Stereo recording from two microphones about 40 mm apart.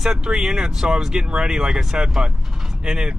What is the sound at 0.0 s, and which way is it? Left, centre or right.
Speech, centre.